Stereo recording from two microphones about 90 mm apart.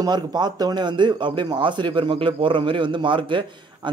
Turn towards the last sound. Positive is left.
turn(degrees=-65)  # may be behind; listen again after turning